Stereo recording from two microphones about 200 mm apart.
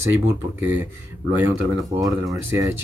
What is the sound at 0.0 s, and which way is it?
Speech, 10° right (ahead or behind).